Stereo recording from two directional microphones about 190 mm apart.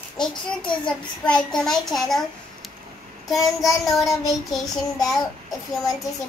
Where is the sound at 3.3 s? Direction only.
Centre (ahead or behind).